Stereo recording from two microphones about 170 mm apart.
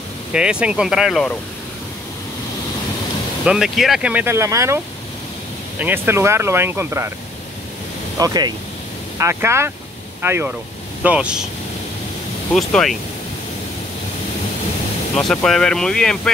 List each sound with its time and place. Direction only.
0.3 s speech: 5° right (ahead or behind)
3.4 s speech: 5° right (ahead or behind)
5.8 s speech: 10° right (ahead or behind)
8.2 s speech: 20° right (ahead or behind); by 11.4 s 5° right (ahead or behind)
12.5 s speech: centre (ahead or behind)
15.1 s speech: 5° left (ahead or behind)